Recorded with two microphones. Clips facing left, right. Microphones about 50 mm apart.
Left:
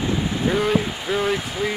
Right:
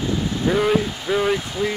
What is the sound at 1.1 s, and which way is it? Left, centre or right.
Speech, centre.